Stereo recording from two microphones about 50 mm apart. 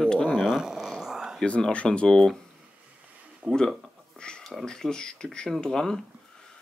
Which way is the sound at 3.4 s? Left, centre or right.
Right.